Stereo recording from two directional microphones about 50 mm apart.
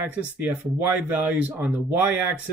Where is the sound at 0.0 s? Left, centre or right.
Right.